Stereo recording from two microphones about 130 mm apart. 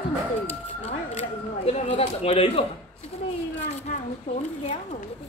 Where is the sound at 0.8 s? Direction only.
50° left (ahead or behind).